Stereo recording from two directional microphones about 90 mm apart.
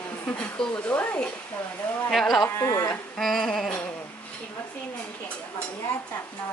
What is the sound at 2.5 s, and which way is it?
Speech, 35° left (ahead or behind).